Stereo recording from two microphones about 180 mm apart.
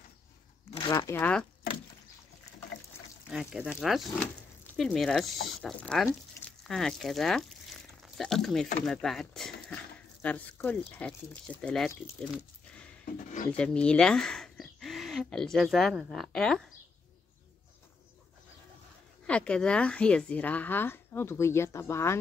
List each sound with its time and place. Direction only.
0.7 s speech: 25° left (ahead or behind)
1.1 s a woman's voice: 10° left (ahead or behind)
3.3 s a woman's voice: 5° right (ahead or behind)
13.0 s a sound: 50° left (ahead or behind)
13.5 s speech: 5° left (ahead or behind)
19.2 s a woman's voice: 5° left (ahead or behind)